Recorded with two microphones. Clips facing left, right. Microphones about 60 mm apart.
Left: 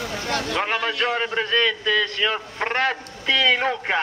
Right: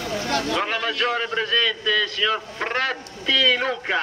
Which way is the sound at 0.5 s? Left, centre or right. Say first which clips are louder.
Even; centre.